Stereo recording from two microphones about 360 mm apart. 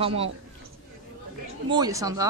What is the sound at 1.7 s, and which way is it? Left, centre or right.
Speech, centre.